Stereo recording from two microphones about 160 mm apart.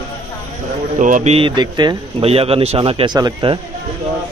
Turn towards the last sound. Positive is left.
turn(degrees=-25)  # may be behind; listen again after turning